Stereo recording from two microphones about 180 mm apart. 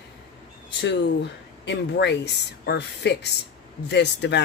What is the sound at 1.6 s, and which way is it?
Speech, 70° left (ahead or behind).